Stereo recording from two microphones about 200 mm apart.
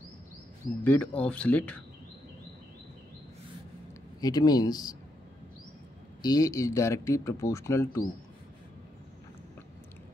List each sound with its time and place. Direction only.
0.8 s speech: 5° left (ahead or behind)
4.2 s speech: 20° left (ahead or behind)
6.2 s speech: 20° left (ahead or behind)